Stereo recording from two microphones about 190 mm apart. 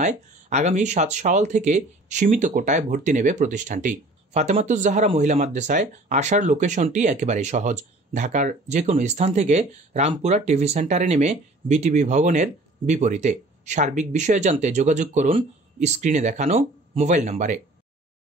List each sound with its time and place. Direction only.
0.0 s speech: 40° right (ahead or behind)